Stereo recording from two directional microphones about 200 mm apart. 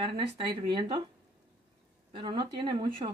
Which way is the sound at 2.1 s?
25° right (ahead or behind).